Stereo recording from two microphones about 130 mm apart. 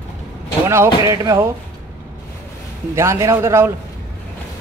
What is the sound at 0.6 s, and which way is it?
Speech, 20° right (ahead or behind).